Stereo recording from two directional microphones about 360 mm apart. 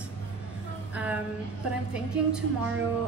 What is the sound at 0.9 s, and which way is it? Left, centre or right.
Speech, centre.